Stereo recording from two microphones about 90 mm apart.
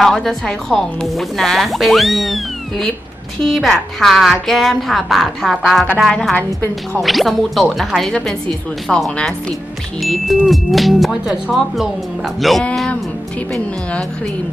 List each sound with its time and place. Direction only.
0.0 s speech: 5° left (ahead or behind)
6.3 s a woman's voice: 20° left (ahead or behind)
7.0 s speech: centre (ahead or behind)